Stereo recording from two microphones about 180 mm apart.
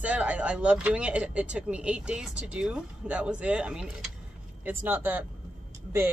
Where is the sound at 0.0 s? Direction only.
5° right (ahead or behind).